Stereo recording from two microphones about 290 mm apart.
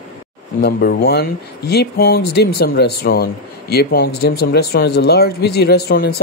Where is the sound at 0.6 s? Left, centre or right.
Left.